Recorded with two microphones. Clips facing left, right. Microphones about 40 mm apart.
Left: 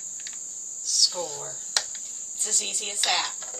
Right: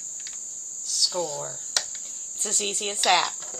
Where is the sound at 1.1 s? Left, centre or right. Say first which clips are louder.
Right 4 dB; centre.